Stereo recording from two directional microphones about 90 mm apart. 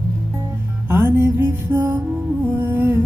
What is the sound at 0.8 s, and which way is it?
Music, 25° right (ahead or behind).